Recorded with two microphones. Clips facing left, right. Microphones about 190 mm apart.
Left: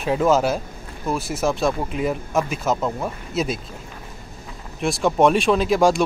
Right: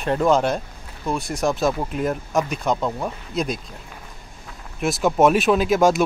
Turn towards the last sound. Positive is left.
turn(degrees=0)  # may be behind; listen again after turning